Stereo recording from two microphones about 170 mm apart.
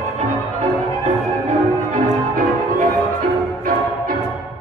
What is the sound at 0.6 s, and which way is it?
Music, 45° right (ahead or behind).